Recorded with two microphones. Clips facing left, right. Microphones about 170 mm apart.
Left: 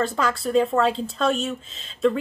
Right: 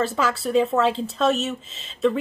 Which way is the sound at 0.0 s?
5° right (ahead or behind).